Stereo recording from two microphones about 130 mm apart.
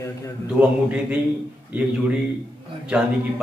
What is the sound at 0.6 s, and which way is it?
Speech, 10° right (ahead or behind).